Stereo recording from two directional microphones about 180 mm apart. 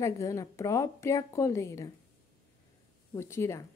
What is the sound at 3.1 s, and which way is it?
Speech, 15° left (ahead or behind).